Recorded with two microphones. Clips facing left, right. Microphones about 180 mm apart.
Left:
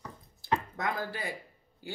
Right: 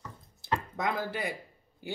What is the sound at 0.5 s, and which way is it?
A man's voice, 20° right (ahead or behind).